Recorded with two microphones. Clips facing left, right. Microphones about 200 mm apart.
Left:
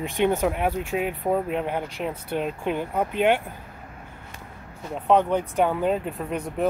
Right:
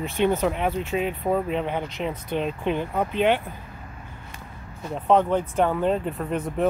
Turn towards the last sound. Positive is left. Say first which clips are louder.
# right 2 dB
turn(degrees=0)  # may be behind; listen again after turning